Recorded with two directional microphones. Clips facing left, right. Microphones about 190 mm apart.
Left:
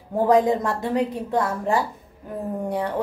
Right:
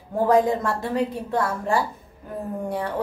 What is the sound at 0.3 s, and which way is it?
A woman's voice, 20° left (ahead or behind).